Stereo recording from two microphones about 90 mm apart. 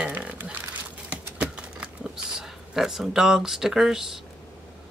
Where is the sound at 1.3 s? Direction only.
10° right (ahead or behind).